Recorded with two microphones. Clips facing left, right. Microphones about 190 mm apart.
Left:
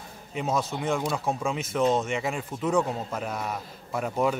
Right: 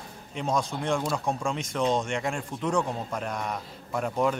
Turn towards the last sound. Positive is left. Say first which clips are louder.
# even
turn(degrees=5)  # may be behind; listen again after turning